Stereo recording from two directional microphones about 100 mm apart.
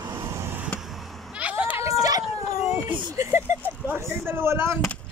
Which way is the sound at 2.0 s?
35° right (ahead or behind).